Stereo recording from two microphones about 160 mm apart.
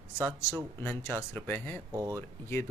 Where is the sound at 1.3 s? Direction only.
10° left (ahead or behind).